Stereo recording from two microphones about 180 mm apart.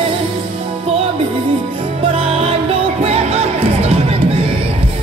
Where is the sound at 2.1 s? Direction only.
35° right (ahead or behind).